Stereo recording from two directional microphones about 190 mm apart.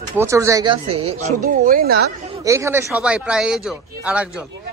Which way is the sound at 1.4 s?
50° right (ahead or behind).